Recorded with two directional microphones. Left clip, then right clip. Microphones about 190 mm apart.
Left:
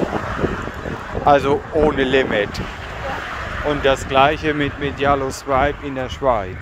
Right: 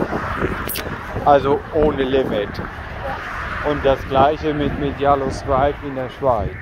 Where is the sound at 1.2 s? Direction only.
35° left (ahead or behind).